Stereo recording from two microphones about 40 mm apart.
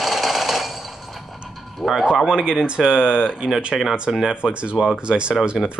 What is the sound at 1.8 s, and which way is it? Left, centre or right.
Speech, centre.